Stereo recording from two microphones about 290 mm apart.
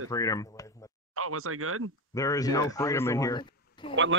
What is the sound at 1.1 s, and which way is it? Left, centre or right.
Speech, right.